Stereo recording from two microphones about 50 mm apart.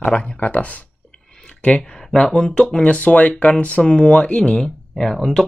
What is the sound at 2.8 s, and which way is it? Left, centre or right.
Speech, left.